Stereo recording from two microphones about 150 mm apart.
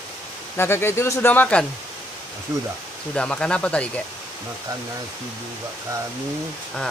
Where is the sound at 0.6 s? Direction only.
15° left (ahead or behind).